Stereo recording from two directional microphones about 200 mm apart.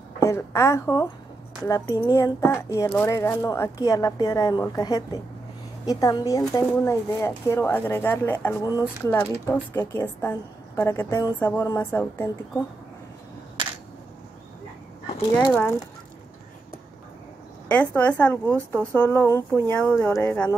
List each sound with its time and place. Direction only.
0.2 s speech: 15° left (ahead or behind)
11.3 s speech: 10° left (ahead or behind)
17.6 s speech: 5° left (ahead or behind)